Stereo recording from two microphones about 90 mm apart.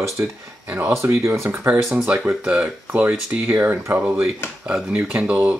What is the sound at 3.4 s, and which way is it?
Speech, 25° right (ahead or behind).